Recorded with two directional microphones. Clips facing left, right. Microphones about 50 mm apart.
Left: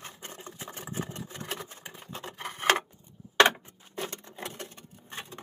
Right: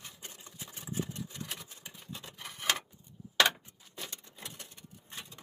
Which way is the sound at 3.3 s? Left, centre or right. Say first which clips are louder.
Left 6 dB; left.